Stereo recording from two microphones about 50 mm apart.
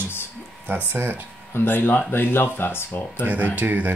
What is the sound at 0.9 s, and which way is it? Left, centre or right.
Speech, right.